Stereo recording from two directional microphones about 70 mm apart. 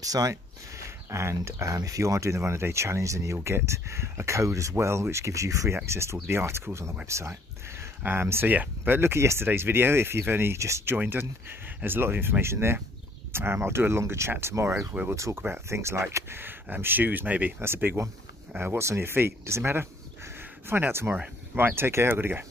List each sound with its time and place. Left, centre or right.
0.0 s speech: right
0.8 s speech: right
8.0 s speech: right